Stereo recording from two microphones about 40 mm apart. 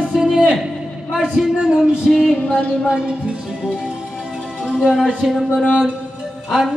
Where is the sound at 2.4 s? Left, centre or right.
Left.